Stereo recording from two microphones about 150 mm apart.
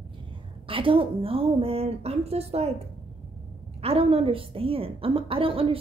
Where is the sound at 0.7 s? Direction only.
35° right (ahead or behind).